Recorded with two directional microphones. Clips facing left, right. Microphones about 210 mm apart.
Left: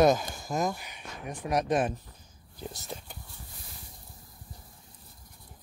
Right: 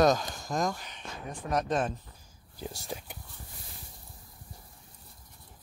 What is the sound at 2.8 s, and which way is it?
Speech, 15° right (ahead or behind).